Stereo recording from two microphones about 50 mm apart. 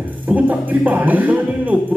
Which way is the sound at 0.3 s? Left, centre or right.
Right.